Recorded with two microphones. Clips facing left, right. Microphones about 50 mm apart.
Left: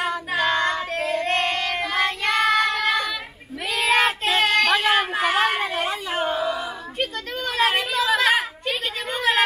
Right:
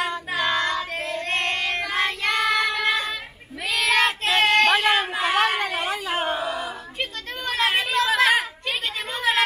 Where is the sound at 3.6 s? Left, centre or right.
Centre.